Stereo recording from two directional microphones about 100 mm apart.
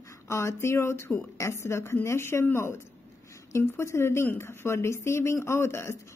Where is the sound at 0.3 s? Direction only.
25° left (ahead or behind).